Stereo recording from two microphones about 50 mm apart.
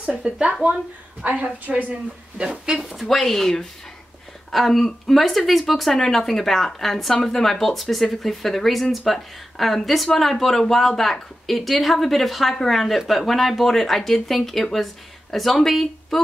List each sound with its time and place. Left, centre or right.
0.0 s speech: centre
2.8 s speech: centre